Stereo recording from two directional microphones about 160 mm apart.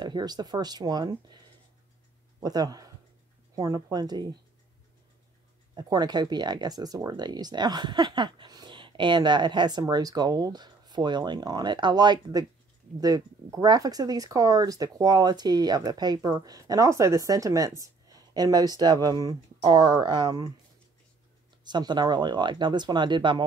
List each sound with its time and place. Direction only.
0.0 s speech: 25° right (ahead or behind)
2.4 s speech: 25° right (ahead or behind)
5.8 s speech: 25° right (ahead or behind)
21.6 s speech: 25° right (ahead or behind)